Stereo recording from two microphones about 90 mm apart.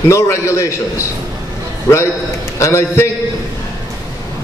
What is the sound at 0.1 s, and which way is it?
Speech, 35° left (ahead or behind).